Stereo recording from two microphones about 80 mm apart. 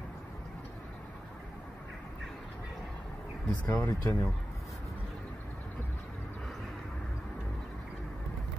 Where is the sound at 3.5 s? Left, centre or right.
Left.